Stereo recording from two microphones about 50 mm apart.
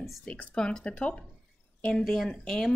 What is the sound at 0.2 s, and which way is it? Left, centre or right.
Speech, left.